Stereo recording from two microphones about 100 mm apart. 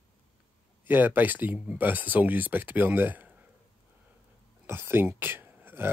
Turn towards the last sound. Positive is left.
turn(degrees=-20)  # may be behind; listen again after turning